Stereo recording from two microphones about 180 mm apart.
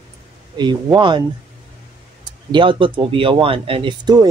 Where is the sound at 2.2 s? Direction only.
25° right (ahead or behind).